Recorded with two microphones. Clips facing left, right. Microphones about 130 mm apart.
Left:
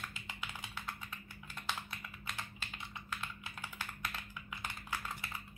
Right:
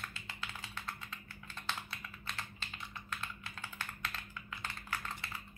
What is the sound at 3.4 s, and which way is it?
Computer keyboard, 15° left (ahead or behind).